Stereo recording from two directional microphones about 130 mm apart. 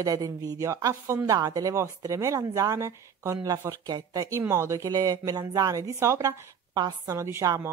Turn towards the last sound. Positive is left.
turn(degrees=-25)  # may be behind; listen again after turning